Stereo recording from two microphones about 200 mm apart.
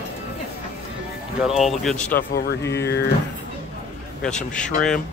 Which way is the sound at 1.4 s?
Centre (ahead or behind).